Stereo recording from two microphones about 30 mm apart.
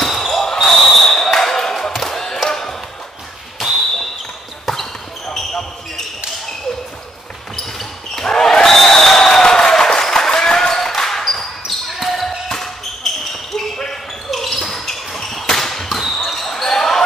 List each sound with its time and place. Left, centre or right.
0.0 s basketball bounce: centre
3.6 s basketball bounce: centre
8.2 s basketball bounce: centre
8.7 s a sound: centre
9.2 s a sound: left
11.0 s basketball bounce: centre
14.3 s basketball bounce: centre